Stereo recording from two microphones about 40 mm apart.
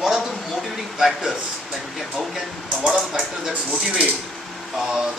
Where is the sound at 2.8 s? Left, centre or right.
Centre.